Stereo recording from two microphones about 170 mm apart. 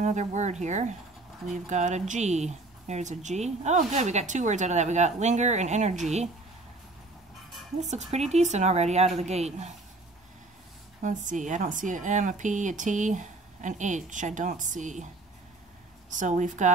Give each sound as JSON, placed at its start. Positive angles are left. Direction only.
{"t": 0.0, "sound": "speech", "side_deg": -45}
{"t": 7.9, "sound": "speech", "side_deg": -40}
{"t": 11.0, "sound": "speech", "side_deg": -50}
{"t": 16.1, "sound": "speech", "side_deg": -45}